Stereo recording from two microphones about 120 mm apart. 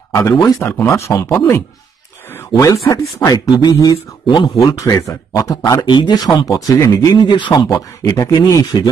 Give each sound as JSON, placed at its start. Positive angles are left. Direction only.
{"t": 0.1, "sound": "speech", "side_deg": 30}
{"t": 0.7, "sound": "speech", "side_deg": 20}
{"t": 2.5, "sound": "speech", "side_deg": 30}
{"t": 7.2, "sound": "speech", "side_deg": 40}
{"t": 7.7, "sound": "speech", "side_deg": 25}